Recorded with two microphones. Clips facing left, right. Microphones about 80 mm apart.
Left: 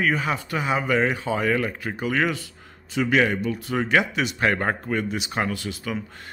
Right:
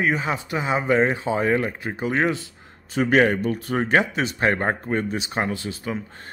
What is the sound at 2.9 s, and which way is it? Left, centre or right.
A man's voice, right.